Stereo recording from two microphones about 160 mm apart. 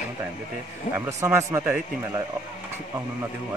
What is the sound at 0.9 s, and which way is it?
Speech, 45° left (ahead or behind).